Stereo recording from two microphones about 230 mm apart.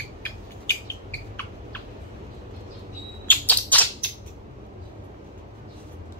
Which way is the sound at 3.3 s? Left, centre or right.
Centre.